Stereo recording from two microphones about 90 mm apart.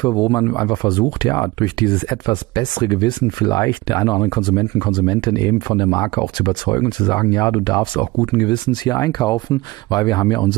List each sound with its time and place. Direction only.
0.0 s speech: 50° left (ahead or behind)